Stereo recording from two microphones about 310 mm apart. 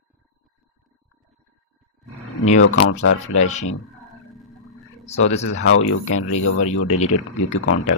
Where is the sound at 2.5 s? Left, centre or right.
Left.